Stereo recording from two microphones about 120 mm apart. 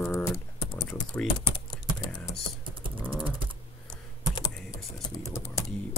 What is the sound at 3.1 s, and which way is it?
Typing, 45° right (ahead or behind).